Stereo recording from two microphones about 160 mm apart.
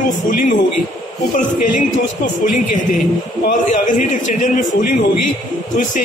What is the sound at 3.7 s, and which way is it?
Speech, 50° left (ahead or behind).